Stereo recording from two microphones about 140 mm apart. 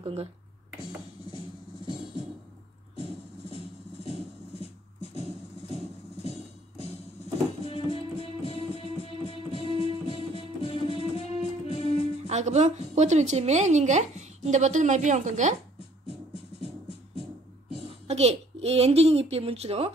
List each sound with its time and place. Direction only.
0.0 s speech: 45° right (ahead or behind)
3.4 s clip-clop: 45° left (ahead or behind)
7.6 s music: 45° left (ahead or behind)
12.3 s a woman's voice: 55° right (ahead or behind)
17.8 s a woman's voice: 50° right (ahead or behind)